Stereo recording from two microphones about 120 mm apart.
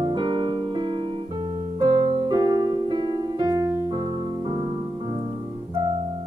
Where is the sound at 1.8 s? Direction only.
40° right (ahead or behind).